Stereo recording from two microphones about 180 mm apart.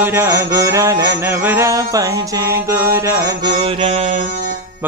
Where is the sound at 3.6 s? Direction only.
30° right (ahead or behind).